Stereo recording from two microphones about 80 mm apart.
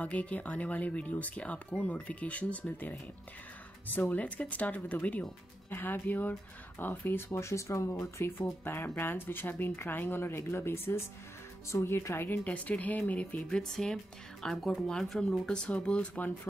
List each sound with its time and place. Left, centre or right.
0.0 s speech: centre; by 12.3 s left
12.4 s speech: centre
13.4 s speech: centre